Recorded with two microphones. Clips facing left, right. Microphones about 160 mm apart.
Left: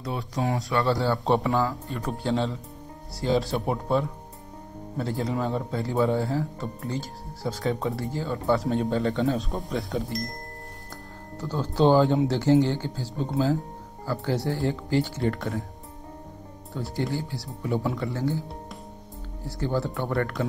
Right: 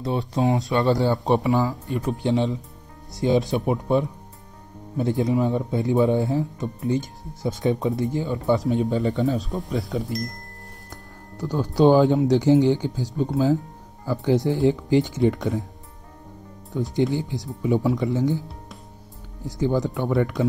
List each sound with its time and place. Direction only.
0.0 s speech: 25° right (ahead or behind)
9.1 s speech: centre (ahead or behind)
11.3 s speech: 15° right (ahead or behind)
16.7 s speech: 20° right (ahead or behind)
19.4 s speech: 15° right (ahead or behind)